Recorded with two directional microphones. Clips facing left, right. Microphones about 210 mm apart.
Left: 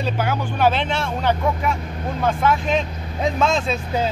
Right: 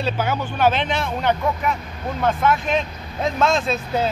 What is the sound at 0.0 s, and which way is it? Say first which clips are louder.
Speech: even; 10° left (ahead or behind).